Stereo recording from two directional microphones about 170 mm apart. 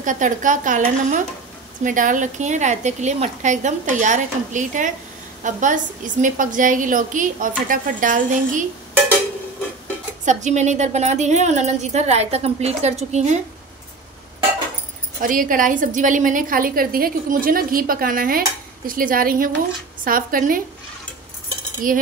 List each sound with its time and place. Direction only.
0.0 s a woman's voice: 50° right (ahead or behind)
10.2 s a woman's voice: 45° right (ahead or behind)
15.1 s a woman's voice: 55° right (ahead or behind)
21.8 s a woman's voice: 55° right (ahead or behind)